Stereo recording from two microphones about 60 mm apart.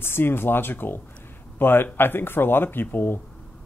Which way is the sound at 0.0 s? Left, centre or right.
Left.